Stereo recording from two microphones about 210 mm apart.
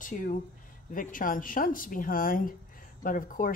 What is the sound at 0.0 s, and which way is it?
Speech, 40° left (ahead or behind).